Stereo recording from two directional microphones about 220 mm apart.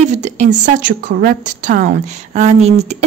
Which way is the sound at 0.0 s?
30° right (ahead or behind).